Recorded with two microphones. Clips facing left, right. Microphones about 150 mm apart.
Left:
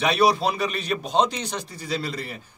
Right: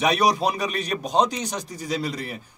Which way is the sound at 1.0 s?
40° right (ahead or behind).